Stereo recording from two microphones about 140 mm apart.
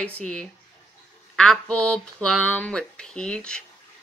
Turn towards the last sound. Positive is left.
turn(degrees=5)  # may be behind; listen again after turning